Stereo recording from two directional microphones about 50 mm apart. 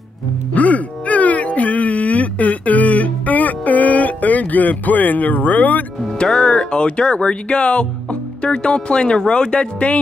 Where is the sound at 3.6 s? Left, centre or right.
Left.